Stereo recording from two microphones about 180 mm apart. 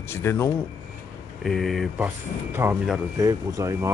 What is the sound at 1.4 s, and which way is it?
Speech, centre (ahead or behind).